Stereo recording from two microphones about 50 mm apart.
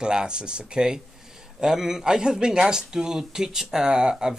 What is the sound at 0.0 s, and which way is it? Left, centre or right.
Speech, centre.